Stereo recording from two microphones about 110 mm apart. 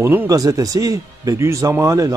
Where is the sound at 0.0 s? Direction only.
20° right (ahead or behind).